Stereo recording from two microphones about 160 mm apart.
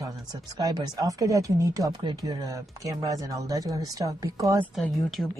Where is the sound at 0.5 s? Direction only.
25° right (ahead or behind).